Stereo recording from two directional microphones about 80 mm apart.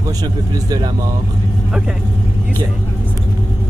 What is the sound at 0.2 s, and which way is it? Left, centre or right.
Speech, right.